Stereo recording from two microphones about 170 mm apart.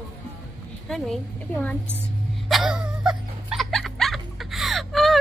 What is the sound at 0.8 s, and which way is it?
Speech, centre (ahead or behind).